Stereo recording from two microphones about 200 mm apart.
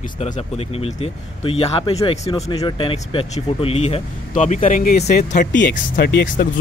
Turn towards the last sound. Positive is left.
turn(degrees=50)  # may be behind; listen again after turning